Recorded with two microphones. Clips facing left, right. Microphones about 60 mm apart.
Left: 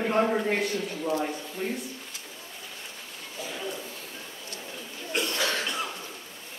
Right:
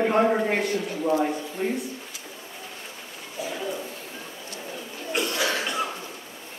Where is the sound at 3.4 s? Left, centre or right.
Centre.